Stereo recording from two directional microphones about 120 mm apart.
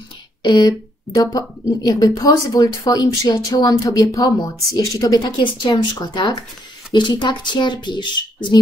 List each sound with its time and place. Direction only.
0.4 s speech: 35° left (ahead or behind)